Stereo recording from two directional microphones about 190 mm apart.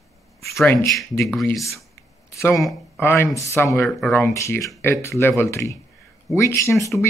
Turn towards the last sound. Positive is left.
turn(degrees=15)  # may be behind; listen again after turning